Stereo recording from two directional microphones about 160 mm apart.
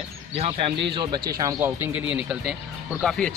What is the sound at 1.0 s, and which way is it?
Speech, 25° right (ahead or behind).